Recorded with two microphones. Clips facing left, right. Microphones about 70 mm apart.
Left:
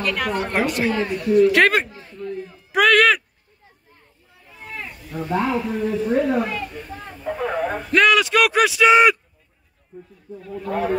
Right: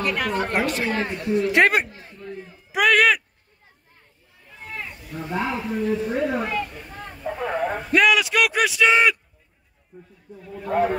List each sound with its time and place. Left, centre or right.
0.2 s a woman's voice: centre
0.9 s a woman's voice: right
2.4 s a sound: centre
4.6 s a sound: centre
5.5 s speech: centre
10.4 s a woman's voice: centre